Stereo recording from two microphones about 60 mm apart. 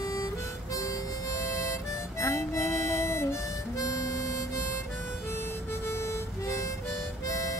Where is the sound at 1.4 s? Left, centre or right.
Left.